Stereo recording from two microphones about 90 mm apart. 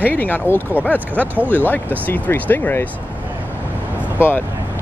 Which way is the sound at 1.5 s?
20° left (ahead or behind).